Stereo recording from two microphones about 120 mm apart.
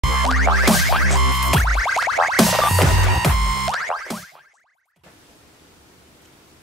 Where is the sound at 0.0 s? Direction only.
Centre (ahead or behind).